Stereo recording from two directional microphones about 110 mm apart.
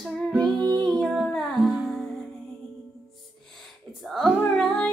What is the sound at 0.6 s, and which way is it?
Music, 40° right (ahead or behind).